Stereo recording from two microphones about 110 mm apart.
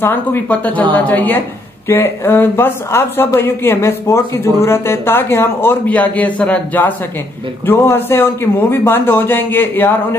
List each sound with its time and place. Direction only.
0.0 s a woman's voice: 20° left (ahead or behind)